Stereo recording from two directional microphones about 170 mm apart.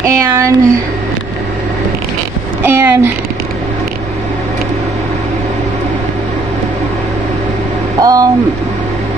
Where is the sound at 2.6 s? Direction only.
15° right (ahead or behind).